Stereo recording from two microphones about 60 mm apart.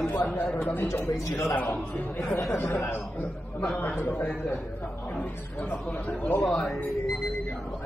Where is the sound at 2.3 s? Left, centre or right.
Left.